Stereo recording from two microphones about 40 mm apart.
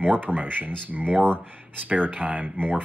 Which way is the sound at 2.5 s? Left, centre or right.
Right.